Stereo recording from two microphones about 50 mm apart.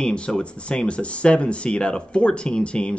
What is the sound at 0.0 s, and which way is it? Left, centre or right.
Speech, centre.